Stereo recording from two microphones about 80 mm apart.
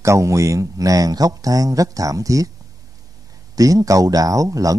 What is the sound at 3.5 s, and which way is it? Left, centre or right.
Speech, right.